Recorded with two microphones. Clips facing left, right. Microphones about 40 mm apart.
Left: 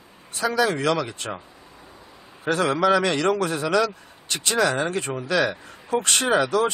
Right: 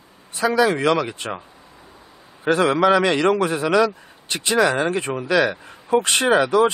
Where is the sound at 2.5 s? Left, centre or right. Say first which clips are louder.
Right 4 dB; right.